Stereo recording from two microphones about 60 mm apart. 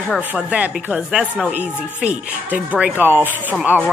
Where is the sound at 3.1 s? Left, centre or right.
Right.